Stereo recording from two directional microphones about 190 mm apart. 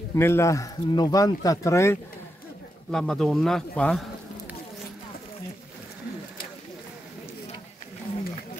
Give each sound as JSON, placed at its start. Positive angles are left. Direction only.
{"t": 0.1, "sound": "speech", "side_deg": 15}
{"t": 2.9, "sound": "speech", "side_deg": 5}